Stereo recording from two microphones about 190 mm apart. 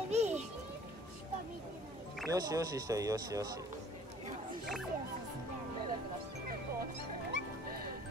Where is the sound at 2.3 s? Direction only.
20° right (ahead or behind).